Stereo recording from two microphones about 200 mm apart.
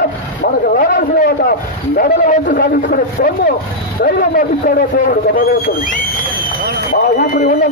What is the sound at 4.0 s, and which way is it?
A man's voice, 50° left (ahead or behind).